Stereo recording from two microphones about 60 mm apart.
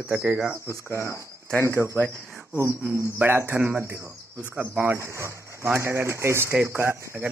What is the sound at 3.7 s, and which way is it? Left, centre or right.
Speech, right.